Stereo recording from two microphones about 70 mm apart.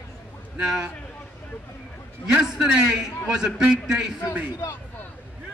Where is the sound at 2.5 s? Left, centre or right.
Centre.